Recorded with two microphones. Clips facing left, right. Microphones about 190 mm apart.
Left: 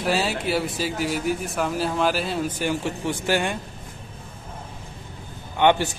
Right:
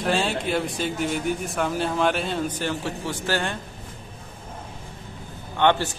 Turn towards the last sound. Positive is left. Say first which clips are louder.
# left 2 dB
turn(degrees=15)  # may be behind; listen again after turning